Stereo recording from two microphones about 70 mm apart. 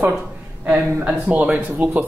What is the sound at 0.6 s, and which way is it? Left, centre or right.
Speech, right.